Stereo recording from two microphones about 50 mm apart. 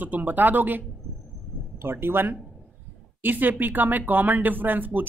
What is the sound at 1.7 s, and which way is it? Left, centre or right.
Speech, right.